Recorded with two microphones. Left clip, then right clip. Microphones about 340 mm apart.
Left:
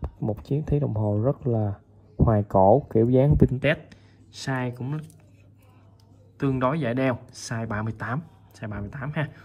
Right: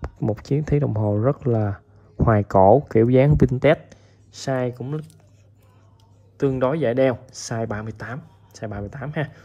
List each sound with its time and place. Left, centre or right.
0.0 s speech: left
3.9 s speech: centre
6.3 s speech: centre